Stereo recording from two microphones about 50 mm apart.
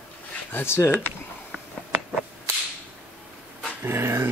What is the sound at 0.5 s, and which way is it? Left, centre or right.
Speech, left.